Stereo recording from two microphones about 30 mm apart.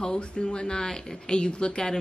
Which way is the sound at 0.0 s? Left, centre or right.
Left.